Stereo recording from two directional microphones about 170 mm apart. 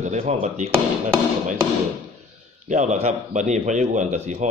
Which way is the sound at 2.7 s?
45° right (ahead or behind).